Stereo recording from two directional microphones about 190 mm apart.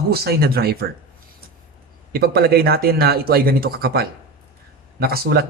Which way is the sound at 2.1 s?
55° right (ahead or behind).